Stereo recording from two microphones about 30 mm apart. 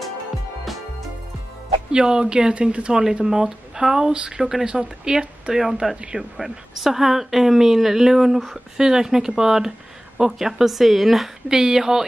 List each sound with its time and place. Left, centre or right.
1.9 s speech: right
3.3 s speech: right
4.6 s speech: right
6.3 s speech: centre
11.4 s speech: centre